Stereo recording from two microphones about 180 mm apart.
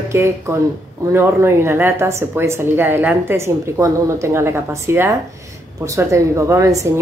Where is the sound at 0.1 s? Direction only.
15° right (ahead or behind).